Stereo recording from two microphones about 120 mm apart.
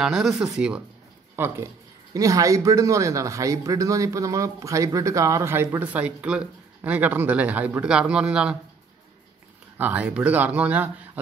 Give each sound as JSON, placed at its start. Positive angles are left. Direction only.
{"t": 0.0, "sound": "speech", "side_deg": -5}
{"t": 1.3, "sound": "a man's voice", "side_deg": -20}
{"t": 9.8, "sound": "speech", "side_deg": -15}